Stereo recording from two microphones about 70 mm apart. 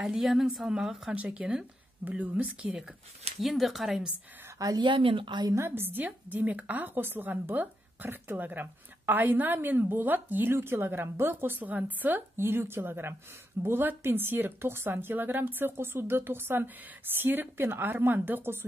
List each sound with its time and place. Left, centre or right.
0.0 s a woman's voice: centre; by 2.7 s right
3.3 s a woman's voice: centre
4.6 s a woman's voice: right
5.5 s a woman's voice: right